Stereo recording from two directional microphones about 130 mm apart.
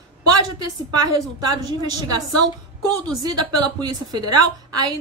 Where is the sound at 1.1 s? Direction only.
30° right (ahead or behind).